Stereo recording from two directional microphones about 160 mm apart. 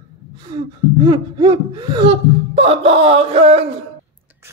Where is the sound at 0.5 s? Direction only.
30° right (ahead or behind).